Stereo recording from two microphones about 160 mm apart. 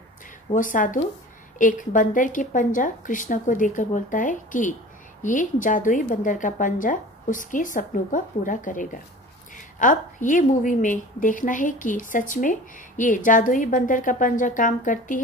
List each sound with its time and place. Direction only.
0.5 s a woman's voice: 55° left (ahead or behind)